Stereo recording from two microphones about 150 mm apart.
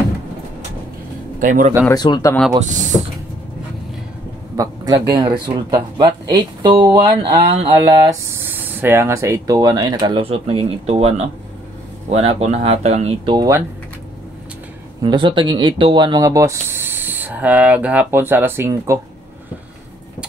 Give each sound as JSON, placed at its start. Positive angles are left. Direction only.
{"t": 1.4, "sound": "speech", "side_deg": -60}
{"t": 2.0, "sound": "speech", "side_deg": 30}
{"t": 2.6, "sound": "speech", "side_deg": -55}
{"t": 4.6, "sound": "a man's voice", "side_deg": -25}
{"t": 8.0, "sound": "speech", "side_deg": -20}
{"t": 15.0, "sound": "speech", "side_deg": -30}